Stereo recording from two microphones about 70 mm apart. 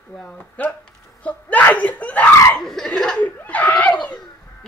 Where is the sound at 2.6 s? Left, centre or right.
Centre.